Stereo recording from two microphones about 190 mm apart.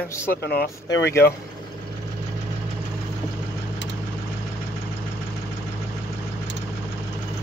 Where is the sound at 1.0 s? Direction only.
60° left (ahead or behind).